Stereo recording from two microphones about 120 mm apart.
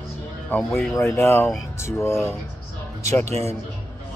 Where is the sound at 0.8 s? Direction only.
20° left (ahead or behind).